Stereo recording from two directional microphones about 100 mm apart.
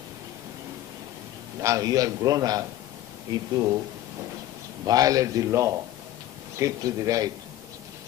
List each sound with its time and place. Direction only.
1.6 s a man's voice: 35° right (ahead or behind)
4.8 s a man's voice: 40° right (ahead or behind)